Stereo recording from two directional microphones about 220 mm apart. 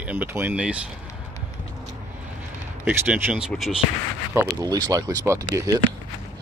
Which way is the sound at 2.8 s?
5° right (ahead or behind).